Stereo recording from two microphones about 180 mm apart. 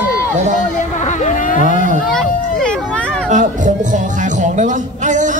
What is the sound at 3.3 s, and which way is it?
Music, 45° right (ahead or behind).